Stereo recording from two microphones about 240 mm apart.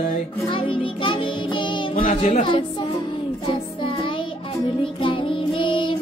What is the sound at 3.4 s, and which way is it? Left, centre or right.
Music, left.